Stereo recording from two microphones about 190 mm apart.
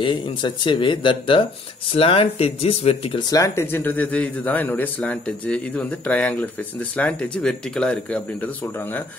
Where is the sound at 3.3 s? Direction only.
15° left (ahead or behind).